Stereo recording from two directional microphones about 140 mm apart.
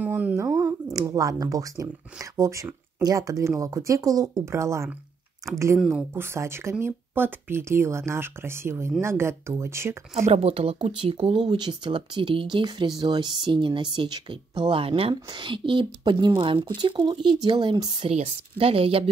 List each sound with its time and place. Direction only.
0.0 s a sound: 10° right (ahead or behind)
0.9 s speech: 25° right (ahead or behind)
5.8 s speech: centre (ahead or behind)
6.1 s speech: 15° right (ahead or behind)
10.1 s speech: 50° right (ahead or behind); by 18.1 s 35° right (ahead or behind)
18.1 s speech: 45° right (ahead or behind)